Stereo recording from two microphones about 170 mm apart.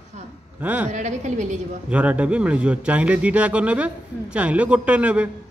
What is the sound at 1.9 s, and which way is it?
Speech, 10° right (ahead or behind).